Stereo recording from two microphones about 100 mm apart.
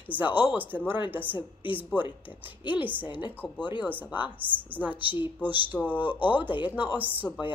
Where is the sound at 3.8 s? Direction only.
20° right (ahead or behind).